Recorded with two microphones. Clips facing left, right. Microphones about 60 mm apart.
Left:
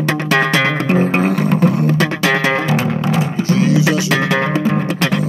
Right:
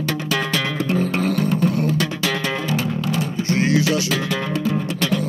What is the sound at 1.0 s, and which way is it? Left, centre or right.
Music, left.